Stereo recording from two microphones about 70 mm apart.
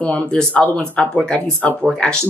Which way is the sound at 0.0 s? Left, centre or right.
Centre.